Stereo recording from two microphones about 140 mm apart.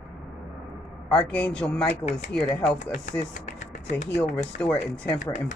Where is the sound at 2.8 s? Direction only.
60° left (ahead or behind).